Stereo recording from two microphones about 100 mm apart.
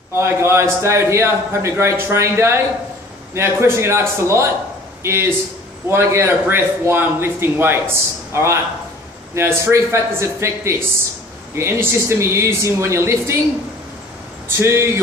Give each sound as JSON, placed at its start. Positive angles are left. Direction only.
{"t": 0.1, "sound": "a man's voice", "side_deg": -25}
{"t": 14.6, "sound": "a man's voice", "side_deg": -25}